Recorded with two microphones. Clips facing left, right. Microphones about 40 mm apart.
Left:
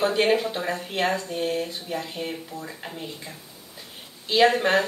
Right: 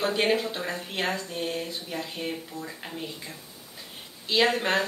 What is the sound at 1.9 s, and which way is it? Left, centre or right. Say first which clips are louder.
Speech: left 2 dB; centre.